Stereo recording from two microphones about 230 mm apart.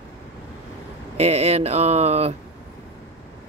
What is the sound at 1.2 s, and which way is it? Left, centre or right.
Speech, right.